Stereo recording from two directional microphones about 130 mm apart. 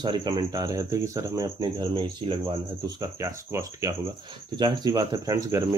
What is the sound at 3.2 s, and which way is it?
Speech, 25° right (ahead or behind).